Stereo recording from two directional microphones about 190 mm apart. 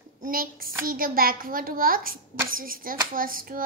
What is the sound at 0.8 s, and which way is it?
A child's voice, 50° right (ahead or behind).